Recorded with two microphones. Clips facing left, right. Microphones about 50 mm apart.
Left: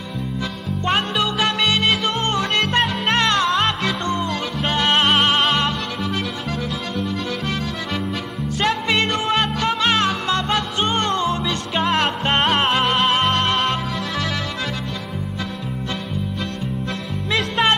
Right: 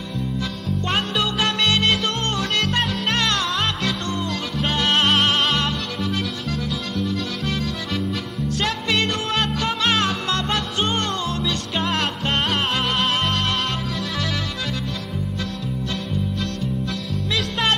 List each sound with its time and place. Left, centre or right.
0.8 s music: centre
7.0 s accordion: centre
8.5 s music: centre
17.4 s music: centre